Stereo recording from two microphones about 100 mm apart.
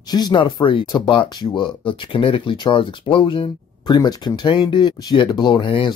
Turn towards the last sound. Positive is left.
turn(degrees=55)  # may be behind; listen again after turning